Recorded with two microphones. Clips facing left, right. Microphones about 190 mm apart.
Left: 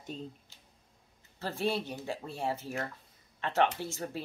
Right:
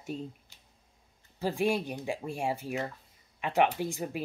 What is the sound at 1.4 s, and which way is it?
Speech, 15° right (ahead or behind).